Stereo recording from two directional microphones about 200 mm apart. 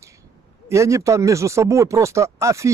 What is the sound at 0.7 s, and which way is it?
A man's voice, 15° right (ahead or behind).